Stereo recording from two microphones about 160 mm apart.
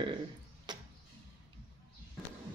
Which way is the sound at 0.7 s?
30° right (ahead or behind).